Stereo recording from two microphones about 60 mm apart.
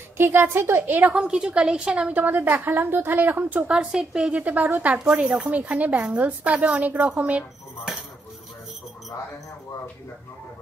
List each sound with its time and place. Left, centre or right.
0.2 s a woman's voice: right
1.1 s a woman's voice: centre